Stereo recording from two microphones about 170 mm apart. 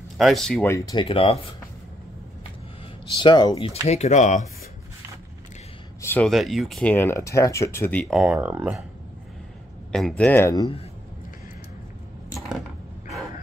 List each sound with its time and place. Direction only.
0.2 s speech: centre (ahead or behind)
0.7 s speech: 20° left (ahead or behind)
1.0 s speech: 35° left (ahead or behind)
3.2 s speech: 25° left (ahead or behind)
3.8 s speech: 40° left (ahead or behind)
5.9 s a sound: 15° left (ahead or behind)
6.2 s speech: centre (ahead or behind)
8.1 s speech: 5° right (ahead or behind)
9.9 s speech: 5° left (ahead or behind)